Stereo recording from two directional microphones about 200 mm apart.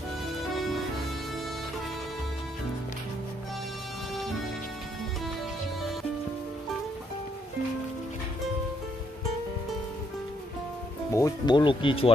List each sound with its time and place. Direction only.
11.1 s speech: 20° left (ahead or behind)